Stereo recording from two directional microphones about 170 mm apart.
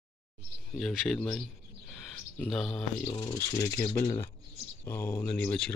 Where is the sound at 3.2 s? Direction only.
20° left (ahead or behind).